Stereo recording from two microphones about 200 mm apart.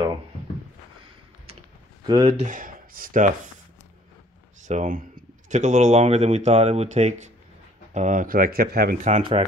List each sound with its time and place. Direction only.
2.0 s speech: 20° right (ahead or behind)
2.4 s speech: 40° right (ahead or behind)
4.6 s speech: 35° right (ahead or behind)
9.2 s speech: 30° right (ahead or behind)